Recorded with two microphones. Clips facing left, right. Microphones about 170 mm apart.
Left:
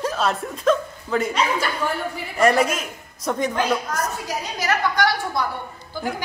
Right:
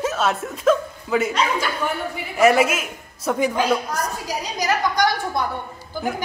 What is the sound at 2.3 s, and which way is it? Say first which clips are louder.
A woman's voice: right 2 dB; 5° right (ahead or behind).